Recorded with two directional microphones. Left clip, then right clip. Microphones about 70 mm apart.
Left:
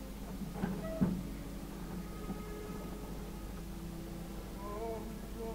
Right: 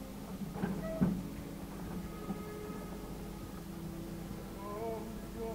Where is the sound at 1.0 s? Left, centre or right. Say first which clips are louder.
Right 1 dB; right.